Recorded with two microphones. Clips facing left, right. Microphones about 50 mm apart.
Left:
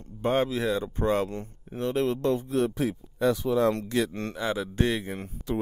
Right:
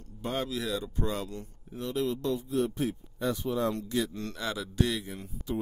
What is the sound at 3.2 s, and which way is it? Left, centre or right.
Speech, left.